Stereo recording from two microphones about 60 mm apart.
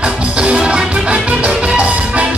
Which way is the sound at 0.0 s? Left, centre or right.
Centre.